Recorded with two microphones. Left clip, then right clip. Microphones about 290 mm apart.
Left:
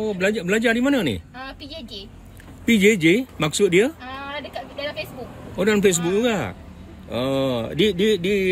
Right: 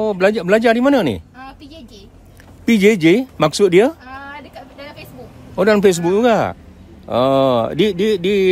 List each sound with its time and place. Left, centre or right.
0.0 s speech: centre
2.6 s speech: centre
5.6 s speech: centre